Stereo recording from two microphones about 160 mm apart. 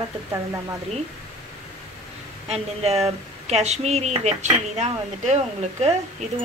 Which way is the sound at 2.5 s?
40° right (ahead or behind).